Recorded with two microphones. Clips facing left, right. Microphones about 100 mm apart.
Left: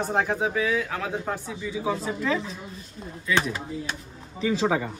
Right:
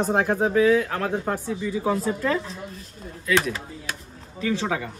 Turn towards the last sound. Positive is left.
turn(degrees=10)  # may be behind; listen again after turning